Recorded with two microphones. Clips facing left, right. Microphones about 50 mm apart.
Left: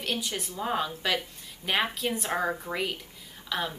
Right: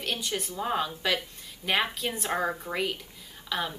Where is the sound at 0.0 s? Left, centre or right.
Centre.